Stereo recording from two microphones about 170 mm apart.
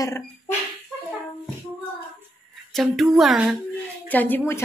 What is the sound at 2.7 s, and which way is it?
Speech, centre (ahead or behind).